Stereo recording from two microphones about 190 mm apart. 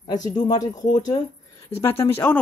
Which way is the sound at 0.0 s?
20° left (ahead or behind).